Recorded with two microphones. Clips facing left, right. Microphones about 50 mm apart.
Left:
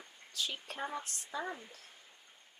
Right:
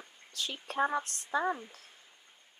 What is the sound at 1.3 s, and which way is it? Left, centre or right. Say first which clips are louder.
Speech: right 9 dB; right.